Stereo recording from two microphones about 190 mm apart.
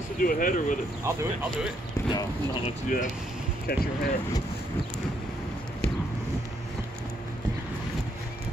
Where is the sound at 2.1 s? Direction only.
25° left (ahead or behind).